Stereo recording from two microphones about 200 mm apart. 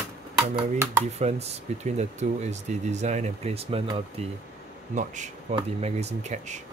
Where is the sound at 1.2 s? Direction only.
30° right (ahead or behind).